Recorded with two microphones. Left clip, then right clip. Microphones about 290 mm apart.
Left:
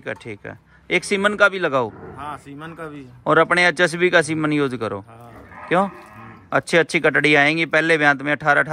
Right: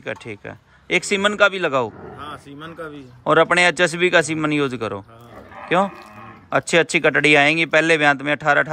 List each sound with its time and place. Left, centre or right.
0.0 s speech: centre
2.6 s speech: left
3.3 s speech: centre